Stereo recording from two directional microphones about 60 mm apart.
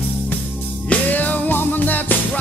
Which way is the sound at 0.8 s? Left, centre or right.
Left.